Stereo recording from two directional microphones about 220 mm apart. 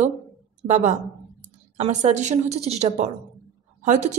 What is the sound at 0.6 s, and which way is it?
A woman's voice, 30° right (ahead or behind).